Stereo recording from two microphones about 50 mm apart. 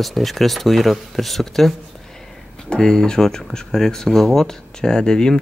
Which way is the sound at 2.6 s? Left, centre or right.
Centre.